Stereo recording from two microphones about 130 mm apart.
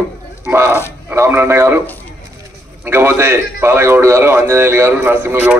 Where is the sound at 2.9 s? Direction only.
20° right (ahead or behind).